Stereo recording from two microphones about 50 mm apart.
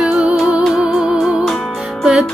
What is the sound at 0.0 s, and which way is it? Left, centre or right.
Music, right.